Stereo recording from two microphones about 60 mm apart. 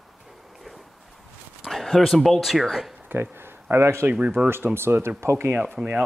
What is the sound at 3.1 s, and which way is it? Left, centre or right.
Speech, right.